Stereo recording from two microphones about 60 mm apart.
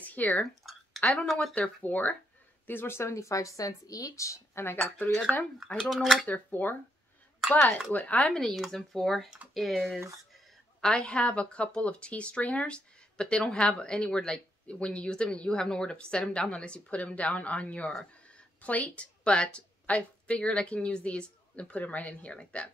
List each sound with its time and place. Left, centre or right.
0.0 s a sound: left
0.7 s speech: centre
1.5 s a woman's voice: left
2.6 s speech: left
3.0 s a woman's voice: left
4.8 s speech: left
5.9 s speech: centre
6.2 s speech: left
7.9 s a woman's voice: left
8.3 s speech: centre
10.8 s a woman's voice: centre